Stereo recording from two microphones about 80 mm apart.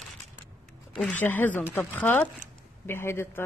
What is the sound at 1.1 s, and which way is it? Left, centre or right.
A man's voice, left.